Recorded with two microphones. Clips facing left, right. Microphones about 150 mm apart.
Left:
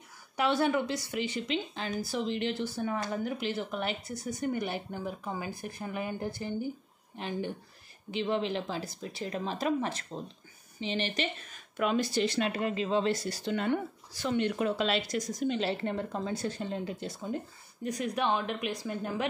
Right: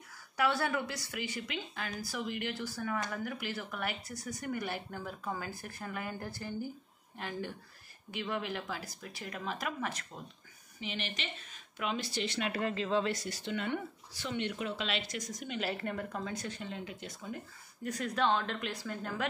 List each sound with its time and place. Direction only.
0.4 s speech: 20° left (ahead or behind)
12.5 s speech: 20° left (ahead or behind)
13.1 s speech: 35° left (ahead or behind)
17.8 s a woman's voice: 15° left (ahead or behind)